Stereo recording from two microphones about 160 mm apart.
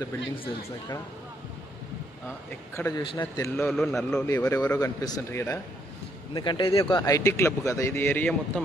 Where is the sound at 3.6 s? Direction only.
Centre (ahead or behind).